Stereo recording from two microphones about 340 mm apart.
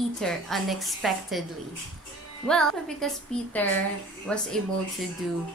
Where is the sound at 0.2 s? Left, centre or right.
Centre.